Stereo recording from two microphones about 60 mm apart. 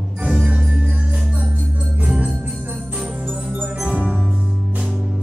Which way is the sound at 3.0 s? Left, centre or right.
Centre.